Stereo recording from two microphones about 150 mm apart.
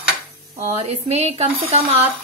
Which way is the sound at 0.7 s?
45° right (ahead or behind).